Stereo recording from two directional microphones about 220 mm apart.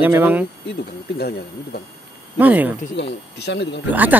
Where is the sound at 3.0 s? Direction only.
50° left (ahead or behind).